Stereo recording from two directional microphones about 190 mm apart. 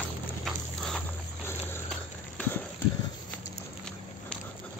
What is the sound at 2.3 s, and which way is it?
Clip-clop, 10° left (ahead or behind).